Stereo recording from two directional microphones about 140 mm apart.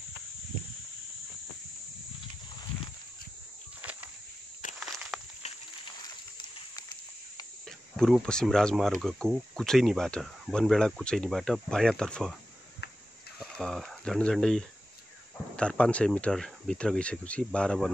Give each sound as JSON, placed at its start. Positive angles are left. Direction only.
{"t": 4.7, "sound": "walk", "side_deg": 0}
{"t": 6.0, "sound": "a sound", "side_deg": 30}
{"t": 7.9, "sound": "speech", "side_deg": 5}
{"t": 13.4, "sound": "speech", "side_deg": 0}